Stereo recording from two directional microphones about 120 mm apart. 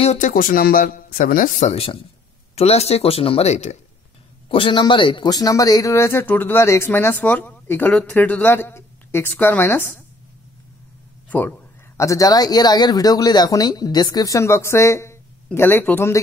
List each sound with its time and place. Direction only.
0.0 s speech: 70° left (ahead or behind)
1.2 s speech: 90° left
2.5 s speech: 60° left (ahead or behind)
4.5 s speech: 45° left (ahead or behind); by 10.0 s 15° left (ahead or behind)
11.2 s speech: 15° left (ahead or behind)